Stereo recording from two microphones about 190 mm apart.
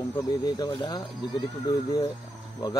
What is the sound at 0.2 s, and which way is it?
Speech, 20° left (ahead or behind).